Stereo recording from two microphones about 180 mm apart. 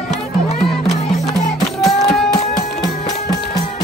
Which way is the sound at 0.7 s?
35° left (ahead or behind).